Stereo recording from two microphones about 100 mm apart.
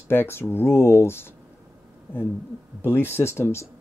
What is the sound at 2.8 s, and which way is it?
Speech, 25° left (ahead or behind).